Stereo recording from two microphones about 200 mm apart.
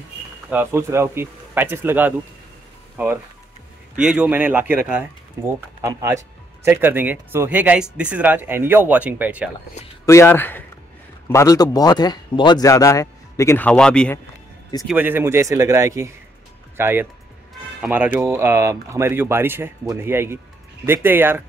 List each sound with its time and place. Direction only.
0.5 s speech: 10° right (ahead or behind)
10.0 s speech: 15° left (ahead or behind)
14.9 s speech: 10° right (ahead or behind)